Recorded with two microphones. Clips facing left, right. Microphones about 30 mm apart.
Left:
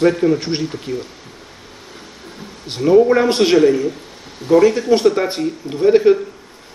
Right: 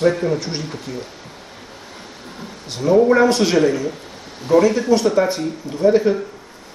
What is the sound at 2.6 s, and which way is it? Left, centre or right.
Speech, left.